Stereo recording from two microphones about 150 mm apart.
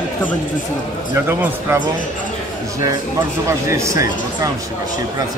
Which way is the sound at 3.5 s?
20° right (ahead or behind).